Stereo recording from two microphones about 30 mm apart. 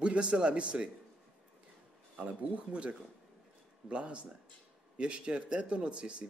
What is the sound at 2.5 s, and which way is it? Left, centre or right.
Speech, right.